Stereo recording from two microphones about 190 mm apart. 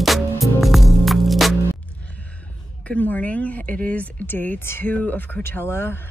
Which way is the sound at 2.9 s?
10° left (ahead or behind).